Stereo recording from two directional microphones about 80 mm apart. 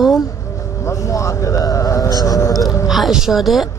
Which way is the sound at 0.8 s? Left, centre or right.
Left.